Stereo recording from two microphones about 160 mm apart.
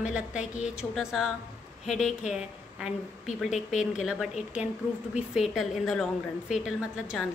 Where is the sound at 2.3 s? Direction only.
5° right (ahead or behind).